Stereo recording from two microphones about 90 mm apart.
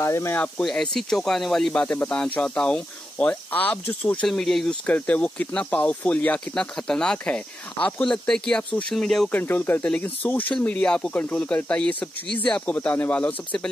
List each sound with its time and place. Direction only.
0.0 s speech: 30° left (ahead or behind)
0.7 s speech: 5° left (ahead or behind)
1.7 s speech: 15° left (ahead or behind)
4.3 s speech: centre (ahead or behind)
4.8 s speech: 15° left (ahead or behind)
9.3 s speech: 20° left (ahead or behind)